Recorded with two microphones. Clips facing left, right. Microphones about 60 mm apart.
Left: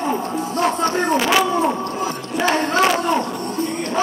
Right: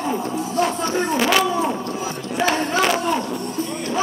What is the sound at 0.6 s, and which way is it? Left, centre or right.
Speech, left.